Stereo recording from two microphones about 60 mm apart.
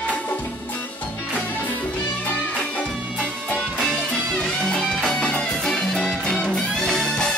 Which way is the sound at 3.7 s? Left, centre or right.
Centre.